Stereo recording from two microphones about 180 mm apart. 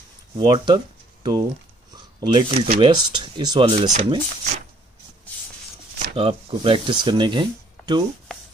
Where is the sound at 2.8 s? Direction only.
25° right (ahead or behind).